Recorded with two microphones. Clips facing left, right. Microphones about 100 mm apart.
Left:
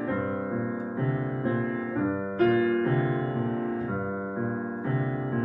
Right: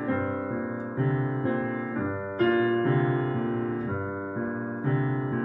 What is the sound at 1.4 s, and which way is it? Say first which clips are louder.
Music: even; 25° right (ahead or behind).